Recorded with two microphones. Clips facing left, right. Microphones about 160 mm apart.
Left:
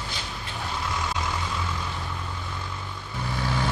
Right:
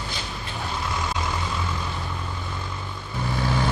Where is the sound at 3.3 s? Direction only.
40° right (ahead or behind).